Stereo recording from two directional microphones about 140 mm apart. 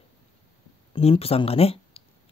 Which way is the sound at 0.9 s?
45° left (ahead or behind).